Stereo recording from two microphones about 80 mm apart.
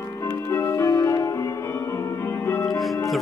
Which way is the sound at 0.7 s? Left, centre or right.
Left.